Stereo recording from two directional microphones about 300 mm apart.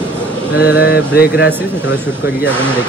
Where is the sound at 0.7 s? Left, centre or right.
Left.